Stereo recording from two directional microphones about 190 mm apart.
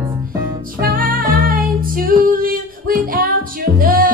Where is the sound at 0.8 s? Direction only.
50° right (ahead or behind).